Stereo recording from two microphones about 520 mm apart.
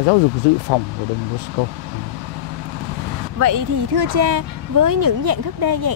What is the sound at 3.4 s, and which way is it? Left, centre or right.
Speech, right.